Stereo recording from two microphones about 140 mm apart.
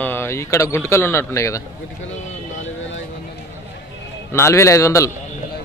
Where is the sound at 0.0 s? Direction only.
15° left (ahead or behind).